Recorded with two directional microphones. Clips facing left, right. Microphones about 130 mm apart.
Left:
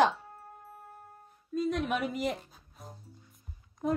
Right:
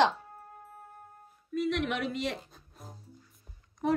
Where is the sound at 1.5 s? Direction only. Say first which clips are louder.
Even; 75° right (ahead or behind).